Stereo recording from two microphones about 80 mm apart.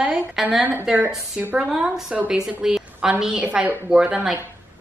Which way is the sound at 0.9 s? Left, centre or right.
Right.